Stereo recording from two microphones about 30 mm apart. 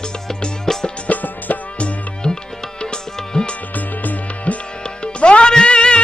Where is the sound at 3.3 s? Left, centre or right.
Left.